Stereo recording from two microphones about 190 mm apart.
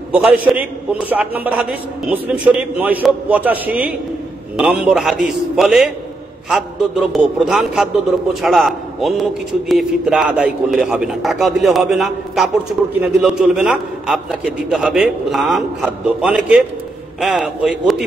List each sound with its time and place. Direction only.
0.1 s a man's voice: 5° right (ahead or behind)